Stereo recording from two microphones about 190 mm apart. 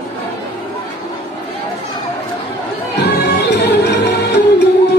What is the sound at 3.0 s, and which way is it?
Music, 60° left (ahead or behind).